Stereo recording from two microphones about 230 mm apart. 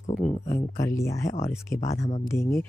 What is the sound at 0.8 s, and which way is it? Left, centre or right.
Speech, centre.